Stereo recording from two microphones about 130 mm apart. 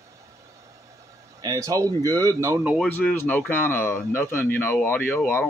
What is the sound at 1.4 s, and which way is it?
Speech, 25° right (ahead or behind).